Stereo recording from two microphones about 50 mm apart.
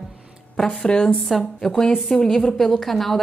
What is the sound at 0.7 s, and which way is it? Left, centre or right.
Speech, centre.